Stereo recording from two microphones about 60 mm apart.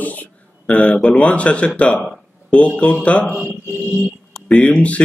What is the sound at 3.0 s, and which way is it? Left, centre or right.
Speech, left.